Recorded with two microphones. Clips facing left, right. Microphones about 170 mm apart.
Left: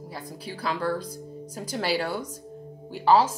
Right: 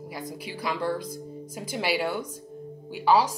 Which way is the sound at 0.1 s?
15° right (ahead or behind).